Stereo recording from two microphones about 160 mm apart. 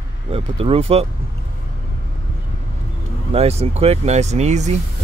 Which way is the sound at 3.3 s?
40° right (ahead or behind).